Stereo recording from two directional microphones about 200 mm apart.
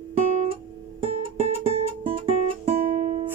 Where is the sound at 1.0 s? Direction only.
30° right (ahead or behind).